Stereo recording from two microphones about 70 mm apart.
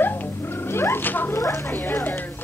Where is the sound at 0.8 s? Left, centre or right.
Left.